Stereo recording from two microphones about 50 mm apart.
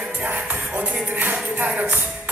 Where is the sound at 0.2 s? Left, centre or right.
Right.